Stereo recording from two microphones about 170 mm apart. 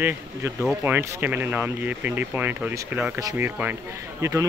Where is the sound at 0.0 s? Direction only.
10° right (ahead or behind).